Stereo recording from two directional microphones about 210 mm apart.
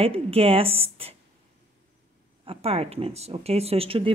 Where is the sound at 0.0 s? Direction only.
30° right (ahead or behind).